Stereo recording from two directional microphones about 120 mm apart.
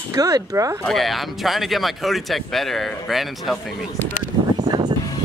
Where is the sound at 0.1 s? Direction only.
30° right (ahead or behind).